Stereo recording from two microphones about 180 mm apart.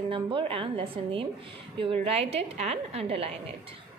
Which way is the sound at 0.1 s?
30° right (ahead or behind).